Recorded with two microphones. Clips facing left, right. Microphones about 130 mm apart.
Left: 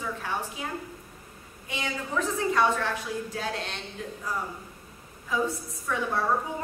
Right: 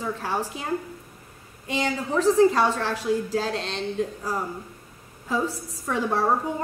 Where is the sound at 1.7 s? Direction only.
35° right (ahead or behind).